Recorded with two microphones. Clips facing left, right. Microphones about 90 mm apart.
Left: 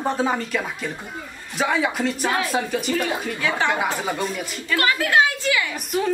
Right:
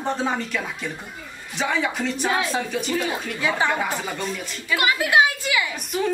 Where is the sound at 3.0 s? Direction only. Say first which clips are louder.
Left 1 dB; 15° right (ahead or behind).